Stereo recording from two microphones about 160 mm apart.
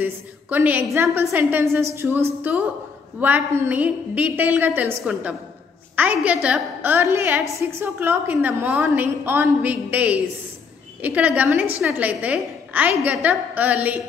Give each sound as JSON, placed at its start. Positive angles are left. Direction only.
{"t": 0.0, "sound": "a woman's voice", "side_deg": -10}